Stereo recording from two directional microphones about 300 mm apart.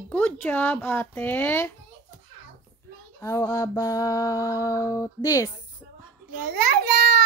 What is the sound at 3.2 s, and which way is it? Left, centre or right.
Mantra, centre.